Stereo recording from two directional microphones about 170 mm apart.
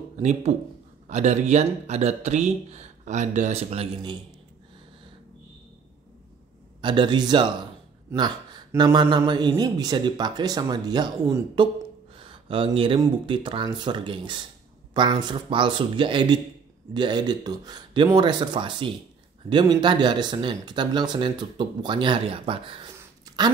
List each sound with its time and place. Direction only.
0.2 s speech: 40° right (ahead or behind)
6.8 s speech: 25° right (ahead or behind)
8.7 s speech: 25° right (ahead or behind)
12.2 s speech: 30° right (ahead or behind)